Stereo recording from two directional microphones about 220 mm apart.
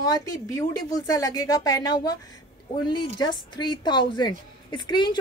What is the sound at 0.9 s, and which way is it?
A woman's voice, 15° left (ahead or behind).